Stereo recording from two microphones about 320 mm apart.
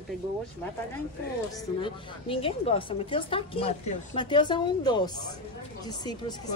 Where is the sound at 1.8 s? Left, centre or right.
Centre.